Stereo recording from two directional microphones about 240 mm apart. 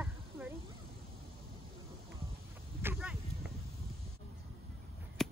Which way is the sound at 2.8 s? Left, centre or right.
Centre.